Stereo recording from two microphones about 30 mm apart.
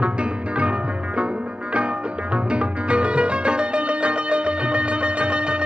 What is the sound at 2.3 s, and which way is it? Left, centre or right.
Music, right.